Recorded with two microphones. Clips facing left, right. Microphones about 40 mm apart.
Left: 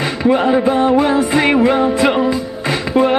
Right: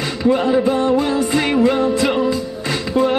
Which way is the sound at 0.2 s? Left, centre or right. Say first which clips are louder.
Left 2 dB; left.